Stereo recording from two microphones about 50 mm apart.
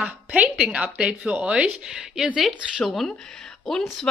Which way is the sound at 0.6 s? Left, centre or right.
Centre.